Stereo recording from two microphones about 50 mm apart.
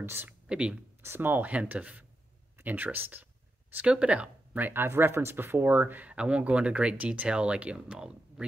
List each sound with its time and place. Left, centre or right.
0.0 s speech: right
0.5 s speech: centre
1.0 s speech: right
1.3 s speech: right
3.8 s speech: right
4.7 s speech: right
6.0 s speech: right